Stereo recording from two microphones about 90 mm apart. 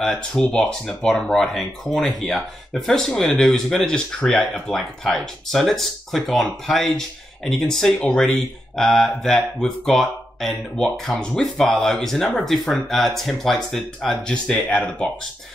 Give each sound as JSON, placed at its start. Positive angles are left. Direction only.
{"t": 0.0, "sound": "speech", "side_deg": 5}